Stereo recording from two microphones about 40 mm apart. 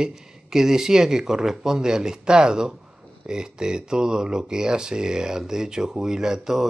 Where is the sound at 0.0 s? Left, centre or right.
Centre.